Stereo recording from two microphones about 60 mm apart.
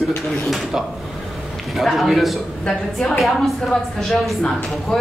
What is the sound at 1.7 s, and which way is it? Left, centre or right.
A man's voice, centre.